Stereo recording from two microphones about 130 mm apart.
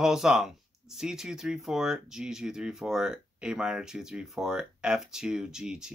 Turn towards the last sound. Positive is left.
turn(degrees=-5)  # may be behind; listen again after turning